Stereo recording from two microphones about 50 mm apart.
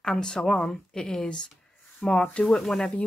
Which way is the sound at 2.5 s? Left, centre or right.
Centre.